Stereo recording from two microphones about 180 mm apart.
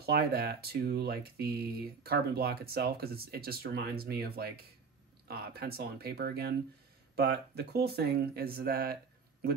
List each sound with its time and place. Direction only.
0.0 s speech: 60° right (ahead or behind)